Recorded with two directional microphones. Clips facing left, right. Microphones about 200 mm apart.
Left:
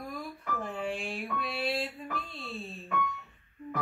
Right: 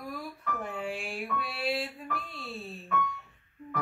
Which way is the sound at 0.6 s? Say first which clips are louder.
Left 2 dB; centre (ahead or behind).